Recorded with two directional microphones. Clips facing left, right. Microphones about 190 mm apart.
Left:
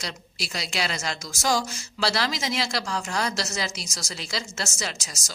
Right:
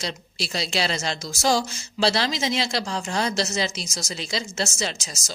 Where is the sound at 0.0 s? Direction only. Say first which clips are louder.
Right 4 dB; 30° right (ahead or behind).